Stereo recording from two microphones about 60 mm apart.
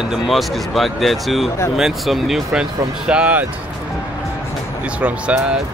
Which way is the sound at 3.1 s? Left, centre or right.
Right.